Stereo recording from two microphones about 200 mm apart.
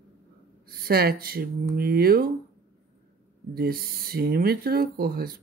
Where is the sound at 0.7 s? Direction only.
50° right (ahead or behind).